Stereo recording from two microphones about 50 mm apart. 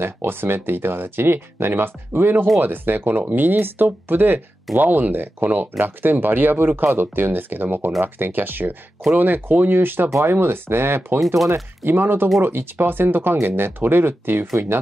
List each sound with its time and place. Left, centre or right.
0.0 s speech: right
11.1 s speech: centre
11.8 s speech: right